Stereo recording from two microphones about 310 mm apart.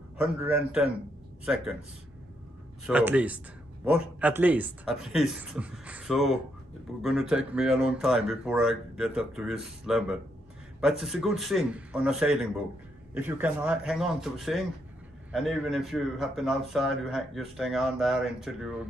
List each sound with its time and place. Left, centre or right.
0.2 s a man's voice: centre
2.9 s a man's voice: centre